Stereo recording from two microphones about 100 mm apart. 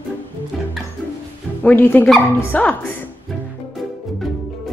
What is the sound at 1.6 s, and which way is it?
A woman's voice, 15° left (ahead or behind).